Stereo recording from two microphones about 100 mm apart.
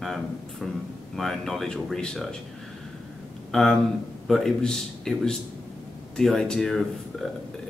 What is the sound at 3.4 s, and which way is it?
Speech, 5° left (ahead or behind).